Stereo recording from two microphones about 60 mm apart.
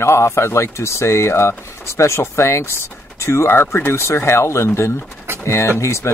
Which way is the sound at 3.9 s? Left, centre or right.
Left.